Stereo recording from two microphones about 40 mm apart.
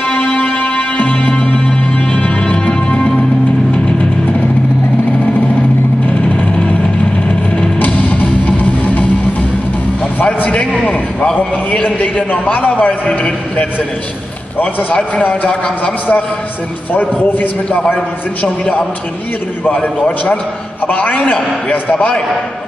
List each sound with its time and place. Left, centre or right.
0.1 s music: left
6.0 s sewing machine: left
7.8 s music: left
10.8 s a sound: left
11.7 s a man's voice: left
17.7 s a man's voice: left